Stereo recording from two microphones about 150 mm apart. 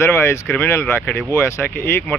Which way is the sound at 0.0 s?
15° left (ahead or behind).